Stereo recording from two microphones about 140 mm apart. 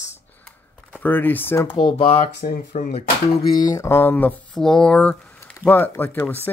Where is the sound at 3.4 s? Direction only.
90° left.